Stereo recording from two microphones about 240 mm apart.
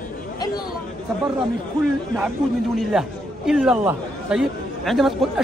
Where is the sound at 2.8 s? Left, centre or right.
Centre.